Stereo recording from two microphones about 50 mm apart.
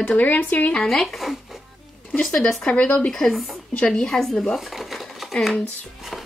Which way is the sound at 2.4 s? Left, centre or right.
Centre.